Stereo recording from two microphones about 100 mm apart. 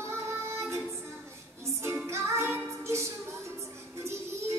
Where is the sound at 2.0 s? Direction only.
25° right (ahead or behind).